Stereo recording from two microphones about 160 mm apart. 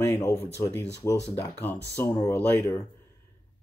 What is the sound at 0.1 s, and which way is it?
Speech, 15° left (ahead or behind).